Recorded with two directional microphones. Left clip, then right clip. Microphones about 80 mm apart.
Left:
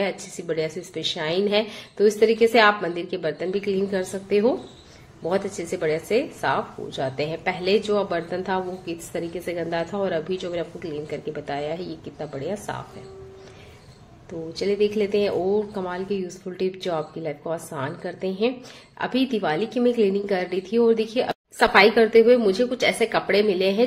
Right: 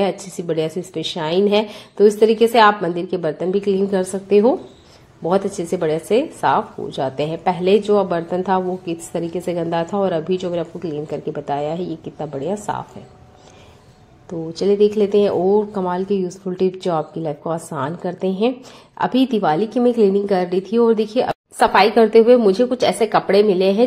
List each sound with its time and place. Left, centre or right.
0.0 s a woman's voice: right
14.5 s a woman's voice: right